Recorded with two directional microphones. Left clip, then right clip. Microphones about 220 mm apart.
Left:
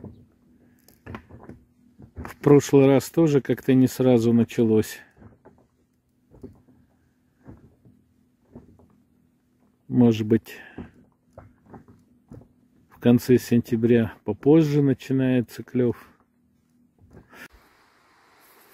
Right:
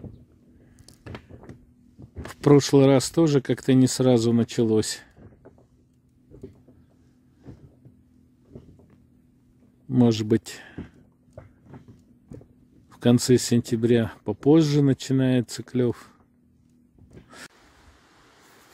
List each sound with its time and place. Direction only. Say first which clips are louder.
1.3 s a sound: even; 15° right (ahead or behind)
2.2 s speech: left 1 dB; centre (ahead or behind)
9.8 s speech: left 1 dB; 5° right (ahead or behind)
12.9 s speech: left 1 dB; 5° right (ahead or behind)